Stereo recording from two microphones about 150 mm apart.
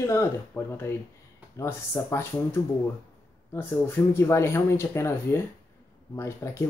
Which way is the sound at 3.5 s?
15° left (ahead or behind).